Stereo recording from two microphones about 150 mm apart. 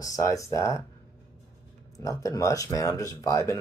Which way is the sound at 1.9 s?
20° left (ahead or behind).